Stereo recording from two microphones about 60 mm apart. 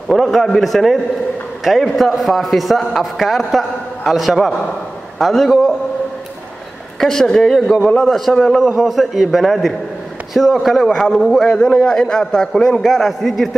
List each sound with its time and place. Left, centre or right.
0.1 s a man's voice: centre
7.0 s a man's voice: centre